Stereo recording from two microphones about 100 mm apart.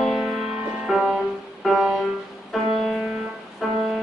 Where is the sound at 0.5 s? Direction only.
15° right (ahead or behind).